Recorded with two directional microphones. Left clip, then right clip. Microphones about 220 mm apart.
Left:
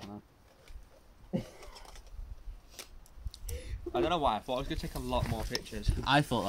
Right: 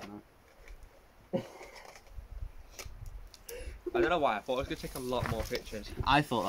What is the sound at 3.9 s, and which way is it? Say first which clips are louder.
Speech: right 1 dB; 45° left (ahead or behind).